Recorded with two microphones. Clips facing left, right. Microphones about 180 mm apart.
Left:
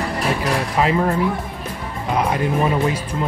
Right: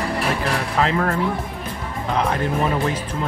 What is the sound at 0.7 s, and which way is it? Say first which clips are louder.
Speech: left 2 dB; 15° left (ahead or behind).